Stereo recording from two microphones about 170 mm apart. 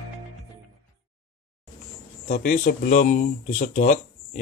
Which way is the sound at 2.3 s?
55° left (ahead or behind).